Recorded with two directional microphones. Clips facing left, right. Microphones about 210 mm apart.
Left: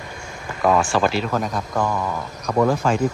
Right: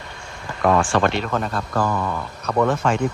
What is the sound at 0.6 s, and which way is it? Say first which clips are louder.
Speech: even; 5° left (ahead or behind).